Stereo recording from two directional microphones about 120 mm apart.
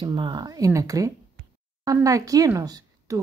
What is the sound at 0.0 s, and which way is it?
A woman's voice, 40° right (ahead or behind).